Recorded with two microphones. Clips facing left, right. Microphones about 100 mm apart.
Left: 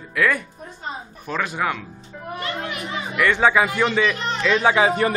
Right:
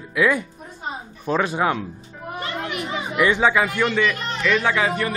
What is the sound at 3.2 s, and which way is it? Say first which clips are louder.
Speech: right 1 dB; 15° right (ahead or behind).